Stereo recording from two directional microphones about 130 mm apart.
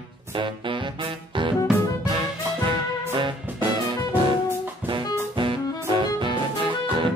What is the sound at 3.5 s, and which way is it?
Music, 15° right (ahead or behind).